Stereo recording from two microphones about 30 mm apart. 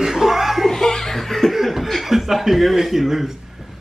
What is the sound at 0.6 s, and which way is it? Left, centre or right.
Speech, centre.